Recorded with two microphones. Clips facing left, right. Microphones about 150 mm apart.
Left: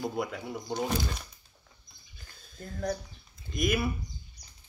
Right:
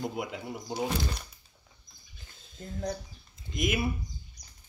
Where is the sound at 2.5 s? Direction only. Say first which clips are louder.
Left 2 dB; 20° right (ahead or behind).